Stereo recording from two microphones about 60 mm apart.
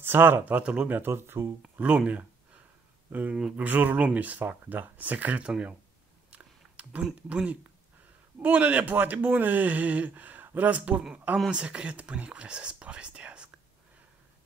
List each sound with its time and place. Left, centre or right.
0.0 s speech: right
0.6 s speech: centre
0.8 s speech: right
1.6 s speech: centre
6.3 s a sound: right
7.2 s speech: right